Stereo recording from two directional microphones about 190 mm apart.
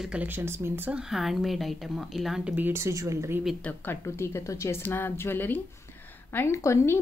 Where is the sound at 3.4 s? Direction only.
5° left (ahead or behind).